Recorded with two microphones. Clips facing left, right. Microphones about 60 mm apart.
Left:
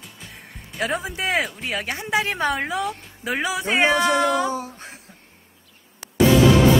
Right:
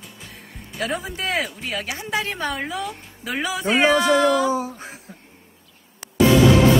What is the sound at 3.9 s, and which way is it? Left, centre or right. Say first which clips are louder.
Speech: right 2 dB; left.